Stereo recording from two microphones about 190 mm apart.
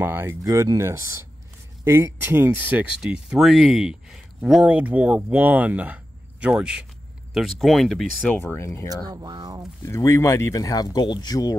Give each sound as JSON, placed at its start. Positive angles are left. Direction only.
{"t": 0.0, "sound": "speech", "side_deg": -10}
{"t": 8.8, "sound": "speech", "side_deg": -20}
{"t": 9.8, "sound": "speech", "side_deg": 15}